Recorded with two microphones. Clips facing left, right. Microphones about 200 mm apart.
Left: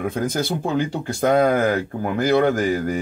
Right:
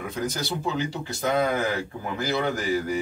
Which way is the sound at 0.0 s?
55° left (ahead or behind).